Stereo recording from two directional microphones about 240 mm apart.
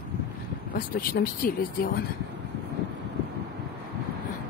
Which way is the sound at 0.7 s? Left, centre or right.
Left.